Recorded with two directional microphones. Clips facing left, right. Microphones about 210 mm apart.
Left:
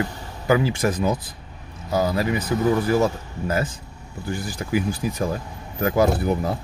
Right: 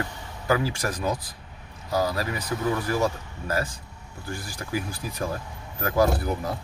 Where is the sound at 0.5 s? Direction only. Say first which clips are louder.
Left 5 dB; 20° left (ahead or behind).